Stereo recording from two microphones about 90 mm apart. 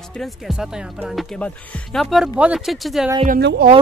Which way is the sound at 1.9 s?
Centre (ahead or behind).